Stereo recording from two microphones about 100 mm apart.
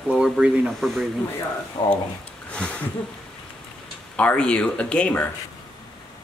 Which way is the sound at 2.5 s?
10° left (ahead or behind).